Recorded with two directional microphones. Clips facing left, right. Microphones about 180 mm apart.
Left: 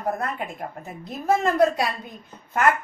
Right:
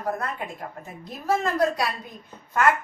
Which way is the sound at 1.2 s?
20° left (ahead or behind).